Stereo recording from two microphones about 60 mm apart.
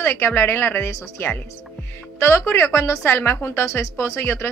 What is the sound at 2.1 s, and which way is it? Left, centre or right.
A woman's voice, left.